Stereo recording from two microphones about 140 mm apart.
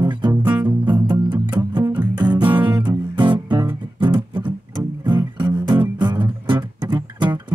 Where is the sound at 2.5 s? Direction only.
35° right (ahead or behind).